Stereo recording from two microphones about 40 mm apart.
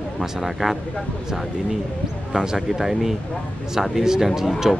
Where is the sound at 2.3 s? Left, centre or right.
Centre.